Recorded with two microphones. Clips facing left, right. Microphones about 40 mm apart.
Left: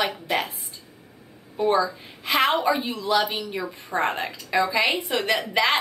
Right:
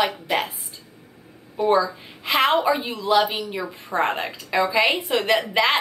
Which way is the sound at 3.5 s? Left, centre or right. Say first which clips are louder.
Right 1 dB; centre.